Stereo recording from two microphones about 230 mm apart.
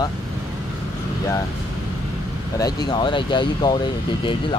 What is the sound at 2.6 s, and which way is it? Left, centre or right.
Speech, centre.